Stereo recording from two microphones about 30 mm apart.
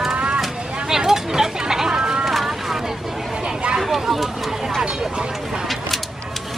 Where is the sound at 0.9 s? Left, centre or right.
Centre.